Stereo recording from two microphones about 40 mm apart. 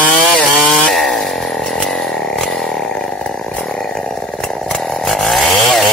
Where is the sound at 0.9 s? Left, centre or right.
Centre.